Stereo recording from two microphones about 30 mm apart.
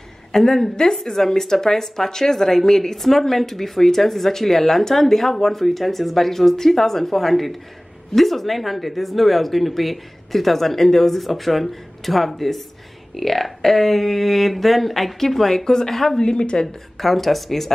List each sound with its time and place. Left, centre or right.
0.3 s a woman's voice: centre
11.1 s speech: centre
16.2 s speech: left
17.0 s speech: centre